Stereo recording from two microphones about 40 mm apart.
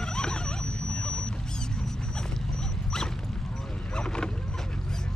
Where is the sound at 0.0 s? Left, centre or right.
Centre.